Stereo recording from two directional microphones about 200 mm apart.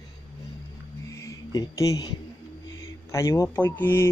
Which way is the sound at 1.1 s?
15° left (ahead or behind).